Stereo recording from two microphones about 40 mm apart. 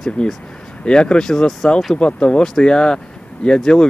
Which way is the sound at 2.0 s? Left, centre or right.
Left.